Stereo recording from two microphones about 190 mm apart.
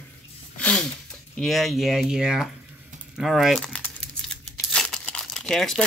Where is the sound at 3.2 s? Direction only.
Centre (ahead or behind).